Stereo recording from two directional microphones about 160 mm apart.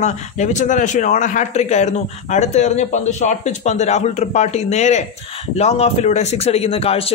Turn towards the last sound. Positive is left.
turn(degrees=40)  # may be behind; listen again after turning